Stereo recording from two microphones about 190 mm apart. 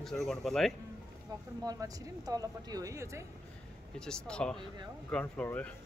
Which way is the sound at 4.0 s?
5° left (ahead or behind).